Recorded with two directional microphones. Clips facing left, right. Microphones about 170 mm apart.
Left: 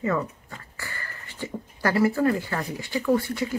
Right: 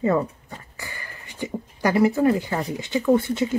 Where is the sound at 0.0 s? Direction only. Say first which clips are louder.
Right 5 dB; 30° right (ahead or behind).